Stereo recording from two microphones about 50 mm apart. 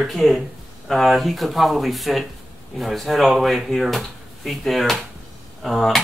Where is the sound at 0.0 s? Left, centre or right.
Centre.